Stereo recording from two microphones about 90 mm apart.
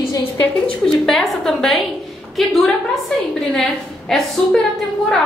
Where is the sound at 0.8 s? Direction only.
5° left (ahead or behind).